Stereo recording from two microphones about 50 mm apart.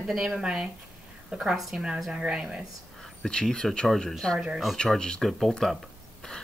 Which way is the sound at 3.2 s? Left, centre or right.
Centre.